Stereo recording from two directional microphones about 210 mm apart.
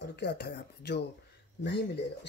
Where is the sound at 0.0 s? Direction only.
50° left (ahead or behind).